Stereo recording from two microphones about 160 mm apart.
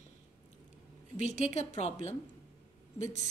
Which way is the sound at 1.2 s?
45° left (ahead or behind).